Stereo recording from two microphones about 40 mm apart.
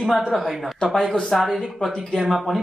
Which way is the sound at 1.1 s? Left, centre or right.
Centre.